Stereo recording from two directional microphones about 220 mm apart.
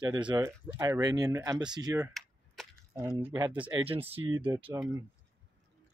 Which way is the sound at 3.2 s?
15° right (ahead or behind).